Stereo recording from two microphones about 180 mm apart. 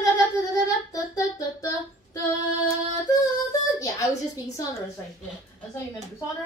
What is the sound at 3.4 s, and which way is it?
Speech, 20° left (ahead or behind).